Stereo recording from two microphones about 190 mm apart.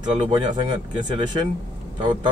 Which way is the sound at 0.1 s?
30° right (ahead or behind).